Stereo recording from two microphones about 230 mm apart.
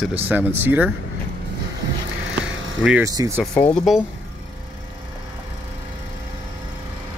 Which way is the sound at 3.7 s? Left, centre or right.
Centre.